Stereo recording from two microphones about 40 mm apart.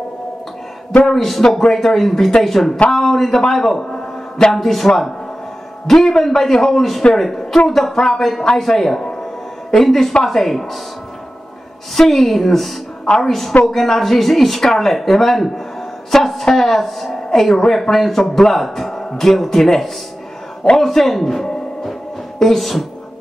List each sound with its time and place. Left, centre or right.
1.0 s speech: centre
3.9 s a sound: centre
4.6 s speech: centre
11.9 s speech: centre